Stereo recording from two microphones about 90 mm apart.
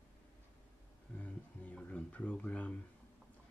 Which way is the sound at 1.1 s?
15° left (ahead or behind).